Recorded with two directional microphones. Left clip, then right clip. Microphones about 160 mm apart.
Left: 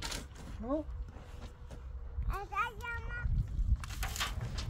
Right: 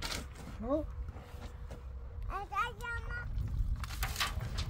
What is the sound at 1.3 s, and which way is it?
Vehicle, centre (ahead or behind).